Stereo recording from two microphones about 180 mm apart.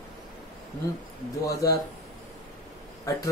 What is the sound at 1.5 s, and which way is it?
Speech, 20° left (ahead or behind).